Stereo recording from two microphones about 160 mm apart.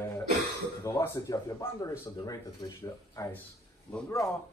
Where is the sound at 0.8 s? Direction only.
20° left (ahead or behind).